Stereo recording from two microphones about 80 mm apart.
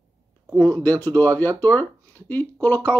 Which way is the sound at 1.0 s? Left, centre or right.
Left.